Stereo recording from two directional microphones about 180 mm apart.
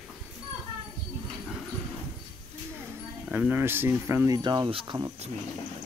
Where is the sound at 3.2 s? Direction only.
10° right (ahead or behind); by 5.3 s 25° right (ahead or behind).